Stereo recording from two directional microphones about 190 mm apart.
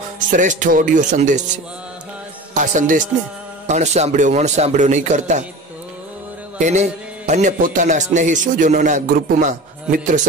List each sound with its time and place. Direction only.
0.3 s speech: 40° right (ahead or behind)
2.5 s a man's voice: 40° right (ahead or behind)
6.6 s speech: 40° right (ahead or behind)